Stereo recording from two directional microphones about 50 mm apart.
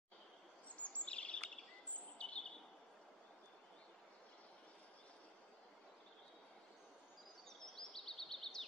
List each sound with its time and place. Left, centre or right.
0.7 s a sound: left
2.0 s bird vocalization: left
7.4 s bird vocalization: centre